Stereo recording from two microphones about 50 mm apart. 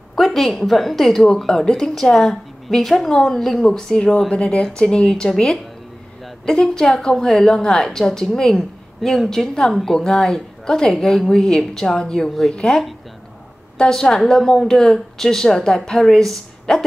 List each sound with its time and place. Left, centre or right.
0.1 s a woman's voice: centre